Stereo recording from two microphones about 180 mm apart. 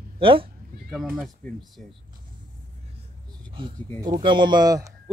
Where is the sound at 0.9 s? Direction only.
Centre (ahead or behind).